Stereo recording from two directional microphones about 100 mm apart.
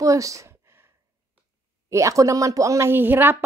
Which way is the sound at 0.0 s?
35° right (ahead or behind).